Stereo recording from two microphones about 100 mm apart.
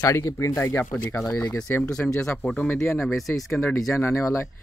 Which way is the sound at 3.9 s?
20° left (ahead or behind).